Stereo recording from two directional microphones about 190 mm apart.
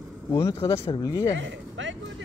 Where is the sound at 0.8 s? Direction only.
25° left (ahead or behind).